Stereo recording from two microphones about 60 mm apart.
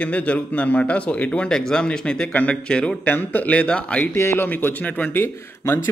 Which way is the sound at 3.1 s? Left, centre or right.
Left.